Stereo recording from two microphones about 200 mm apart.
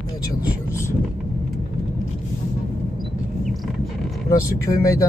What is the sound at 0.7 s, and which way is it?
Speech, 15° left (ahead or behind).